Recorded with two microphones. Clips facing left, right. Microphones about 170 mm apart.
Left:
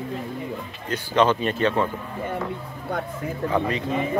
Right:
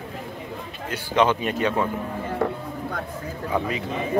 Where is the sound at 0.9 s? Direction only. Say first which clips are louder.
Left 1 dB; 10° right (ahead or behind).